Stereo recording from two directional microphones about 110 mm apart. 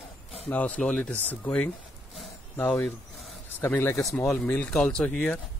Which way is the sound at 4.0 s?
5° left (ahead or behind).